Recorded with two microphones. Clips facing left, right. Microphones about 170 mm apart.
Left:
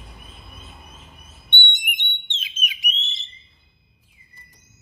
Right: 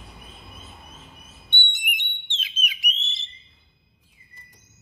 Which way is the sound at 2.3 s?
20° left (ahead or behind).